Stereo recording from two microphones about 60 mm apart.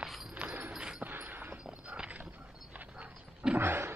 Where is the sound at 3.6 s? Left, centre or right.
Right.